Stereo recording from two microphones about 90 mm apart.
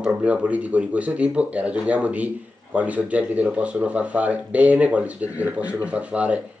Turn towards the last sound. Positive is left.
turn(degrees=-15)  # may be behind; listen again after turning